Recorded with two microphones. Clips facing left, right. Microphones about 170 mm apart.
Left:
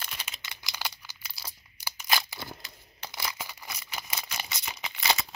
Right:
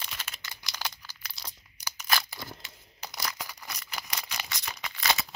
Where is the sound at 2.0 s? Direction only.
15° left (ahead or behind).